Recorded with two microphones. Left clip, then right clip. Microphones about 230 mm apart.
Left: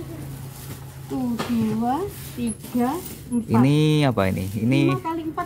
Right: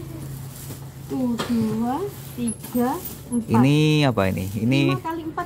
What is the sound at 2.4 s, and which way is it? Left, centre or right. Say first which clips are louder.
Speech: even; centre.